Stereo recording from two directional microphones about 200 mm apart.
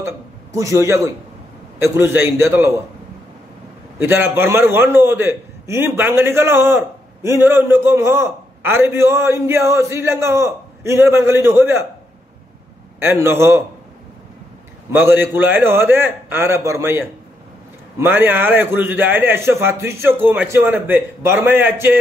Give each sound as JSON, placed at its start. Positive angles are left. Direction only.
{"t": 0.6, "sound": "a man's voice", "side_deg": -15}
{"t": 4.0, "sound": "a man's voice", "side_deg": -10}
{"t": 13.0, "sound": "a man's voice", "side_deg": -10}
{"t": 14.9, "sound": "a man's voice", "side_deg": -10}